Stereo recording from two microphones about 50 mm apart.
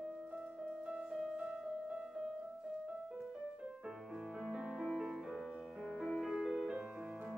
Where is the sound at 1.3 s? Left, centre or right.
Centre.